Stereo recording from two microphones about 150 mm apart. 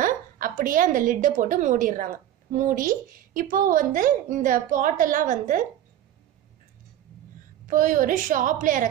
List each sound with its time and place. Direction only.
0.0 s a woman's voice: 65° right (ahead or behind)
7.6 s a woman's voice: 65° right (ahead or behind)